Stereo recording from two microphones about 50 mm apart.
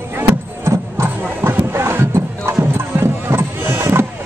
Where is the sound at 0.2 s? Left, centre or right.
Right.